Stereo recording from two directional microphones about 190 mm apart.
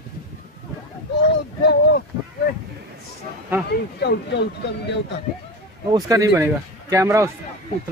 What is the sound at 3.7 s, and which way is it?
Speech, 60° left (ahead or behind).